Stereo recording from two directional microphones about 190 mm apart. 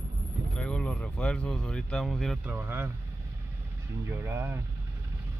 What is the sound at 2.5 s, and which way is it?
Speech, 10° right (ahead or behind).